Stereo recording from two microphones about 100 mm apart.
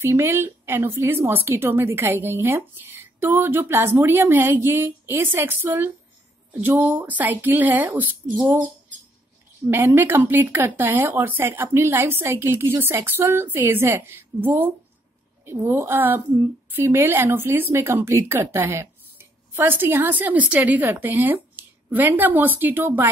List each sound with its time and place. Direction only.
0.0 s speech: 25° right (ahead or behind)
9.7 s speech: 25° right (ahead or behind)